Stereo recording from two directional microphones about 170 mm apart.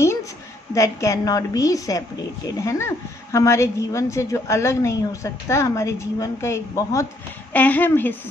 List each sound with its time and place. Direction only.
0.7 s a woman's voice: 20° left (ahead or behind)